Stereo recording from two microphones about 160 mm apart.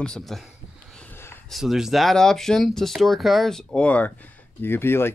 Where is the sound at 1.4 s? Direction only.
Centre (ahead or behind).